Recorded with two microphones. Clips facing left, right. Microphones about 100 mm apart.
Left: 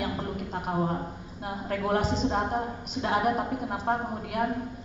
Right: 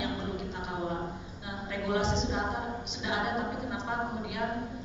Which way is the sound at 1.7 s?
45° left (ahead or behind).